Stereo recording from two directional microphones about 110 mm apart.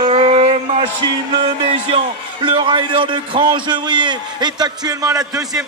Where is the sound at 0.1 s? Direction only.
65° right (ahead or behind).